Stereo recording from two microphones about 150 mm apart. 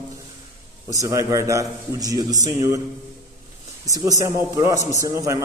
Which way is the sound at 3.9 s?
25° right (ahead or behind).